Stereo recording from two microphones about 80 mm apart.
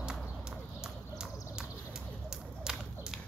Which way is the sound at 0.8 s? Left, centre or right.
Centre.